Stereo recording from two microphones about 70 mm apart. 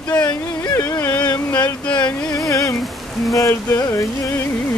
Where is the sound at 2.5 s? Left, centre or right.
Left.